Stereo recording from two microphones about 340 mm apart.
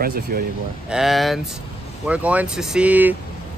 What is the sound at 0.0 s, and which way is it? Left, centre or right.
Speech, right.